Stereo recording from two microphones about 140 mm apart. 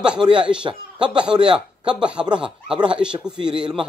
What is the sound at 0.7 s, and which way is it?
Speech, 30° right (ahead or behind).